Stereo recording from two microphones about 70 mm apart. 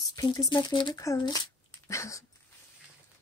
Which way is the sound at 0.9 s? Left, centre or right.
Left.